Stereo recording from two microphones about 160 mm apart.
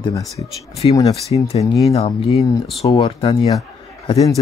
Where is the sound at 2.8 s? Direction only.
30° left (ahead or behind).